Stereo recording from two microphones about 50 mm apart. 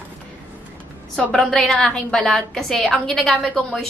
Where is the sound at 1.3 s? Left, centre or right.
Centre.